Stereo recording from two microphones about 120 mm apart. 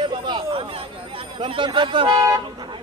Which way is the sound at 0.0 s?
40° right (ahead or behind).